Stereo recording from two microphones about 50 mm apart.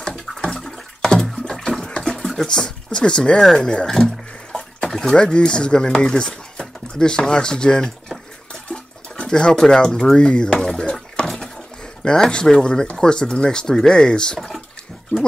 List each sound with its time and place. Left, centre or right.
0.4 s water: centre
1.6 s a sound: centre
4.8 s speech: centre